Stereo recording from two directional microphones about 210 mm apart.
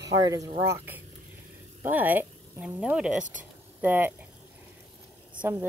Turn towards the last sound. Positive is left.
turn(degrees=-10)  # may be behind; listen again after turning